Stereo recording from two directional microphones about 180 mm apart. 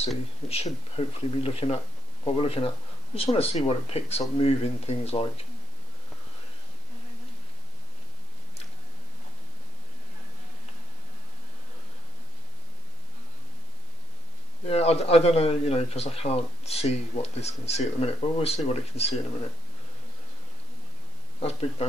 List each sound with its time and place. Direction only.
0.5 s a man's voice: 35° left (ahead or behind)
14.7 s a man's voice: 35° left (ahead or behind)
21.4 s a man's voice: 35° left (ahead or behind)